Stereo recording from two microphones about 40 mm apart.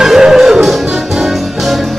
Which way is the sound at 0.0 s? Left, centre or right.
Centre.